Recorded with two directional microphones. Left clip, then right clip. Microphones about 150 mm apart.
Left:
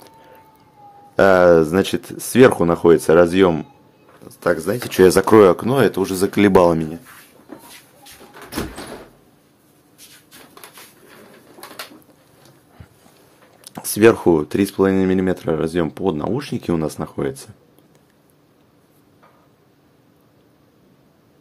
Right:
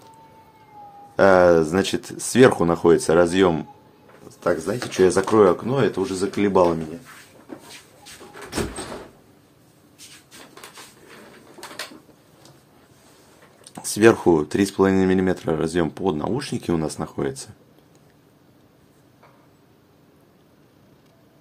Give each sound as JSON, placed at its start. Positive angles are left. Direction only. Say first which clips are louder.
{"t": 1.1, "sound": "speech", "louder": "left 3 dB", "side_deg": 40}
{"t": 4.2, "sound": "a sound", "louder": "left 3 dB", "side_deg": 35}
{"t": 4.6, "sound": "speech", "louder": "left 7 dB", "side_deg": 45}
{"t": 13.7, "sound": "speech", "louder": "left 3 dB", "side_deg": 30}